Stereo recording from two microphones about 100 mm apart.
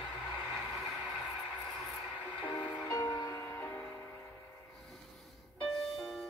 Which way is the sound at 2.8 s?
40° left (ahead or behind).